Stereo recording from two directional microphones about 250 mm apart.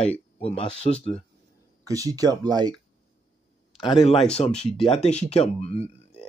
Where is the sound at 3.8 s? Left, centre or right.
Centre.